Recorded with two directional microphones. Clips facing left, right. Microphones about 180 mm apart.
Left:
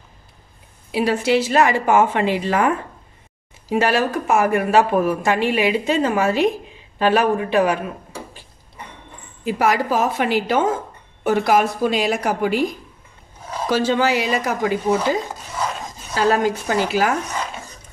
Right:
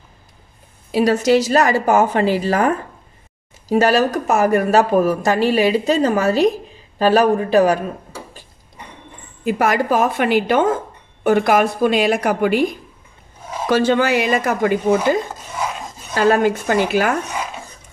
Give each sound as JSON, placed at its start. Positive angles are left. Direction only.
{"t": 0.9, "sound": "speech", "side_deg": -40}
{"t": 9.4, "sound": "a woman's voice", "side_deg": -50}
{"t": 16.2, "sound": "a woman's voice", "side_deg": -55}